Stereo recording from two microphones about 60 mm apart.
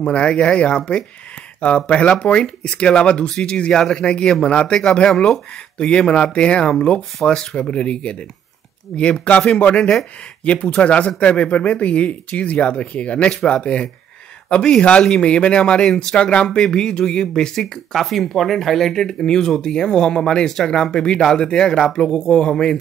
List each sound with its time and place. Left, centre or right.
0.0 s speech: centre